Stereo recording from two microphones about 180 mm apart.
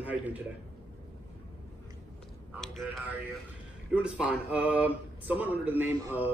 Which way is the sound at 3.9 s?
5° right (ahead or behind).